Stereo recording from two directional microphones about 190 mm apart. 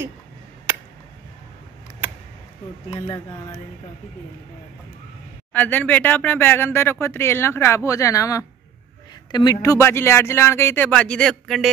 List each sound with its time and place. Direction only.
0.7 s a sound: 10° right (ahead or behind)
2.9 s speech: 35° left (ahead or behind)
5.5 s speech: 10° left (ahead or behind)